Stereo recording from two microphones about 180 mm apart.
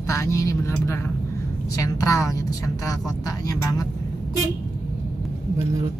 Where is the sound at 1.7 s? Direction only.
20° left (ahead or behind).